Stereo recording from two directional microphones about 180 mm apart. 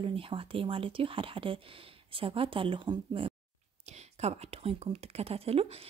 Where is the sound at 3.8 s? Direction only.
40° right (ahead or behind).